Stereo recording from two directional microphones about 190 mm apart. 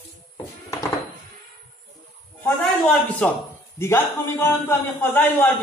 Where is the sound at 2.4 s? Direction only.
Centre (ahead or behind).